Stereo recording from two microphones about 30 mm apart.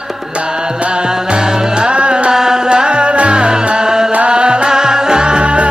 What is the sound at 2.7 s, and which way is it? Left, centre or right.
Music, right.